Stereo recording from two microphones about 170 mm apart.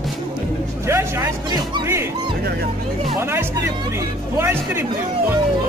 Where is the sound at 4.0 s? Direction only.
15° right (ahead or behind).